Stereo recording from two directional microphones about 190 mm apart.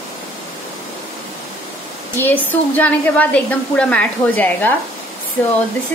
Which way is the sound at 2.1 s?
10° left (ahead or behind).